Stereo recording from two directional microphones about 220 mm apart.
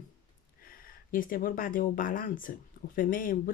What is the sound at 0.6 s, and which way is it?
Speech, 40° left (ahead or behind).